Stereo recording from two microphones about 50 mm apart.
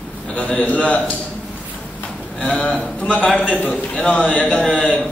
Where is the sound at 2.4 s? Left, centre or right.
Left.